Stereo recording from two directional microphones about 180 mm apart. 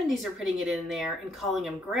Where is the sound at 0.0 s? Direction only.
Centre (ahead or behind).